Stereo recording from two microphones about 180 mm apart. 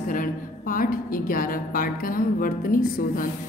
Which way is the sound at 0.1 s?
50° left (ahead or behind).